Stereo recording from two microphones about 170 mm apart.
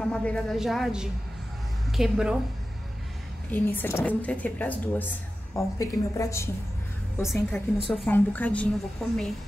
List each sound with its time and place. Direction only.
0.0 s a woman's voice: 5° left (ahead or behind)
3.5 s speech: 15° left (ahead or behind)
7.2 s a woman's voice: 5° left (ahead or behind)